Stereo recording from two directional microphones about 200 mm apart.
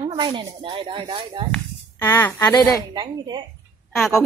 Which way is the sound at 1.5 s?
10° left (ahead or behind).